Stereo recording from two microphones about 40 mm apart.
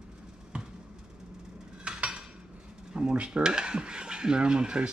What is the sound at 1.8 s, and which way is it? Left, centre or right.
Dishes, right.